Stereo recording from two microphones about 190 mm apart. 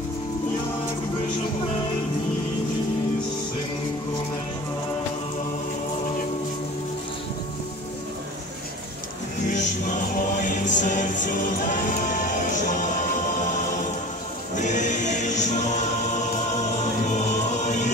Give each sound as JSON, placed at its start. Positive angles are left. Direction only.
{"t": 9.5, "sound": "music", "side_deg": 40}
{"t": 14.5, "sound": "choir", "side_deg": 40}